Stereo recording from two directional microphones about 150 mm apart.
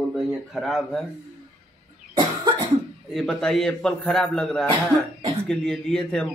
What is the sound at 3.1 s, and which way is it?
Speech, 5° left (ahead or behind).